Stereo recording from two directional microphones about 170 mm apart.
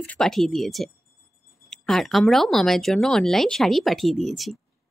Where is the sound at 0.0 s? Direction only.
5° left (ahead or behind).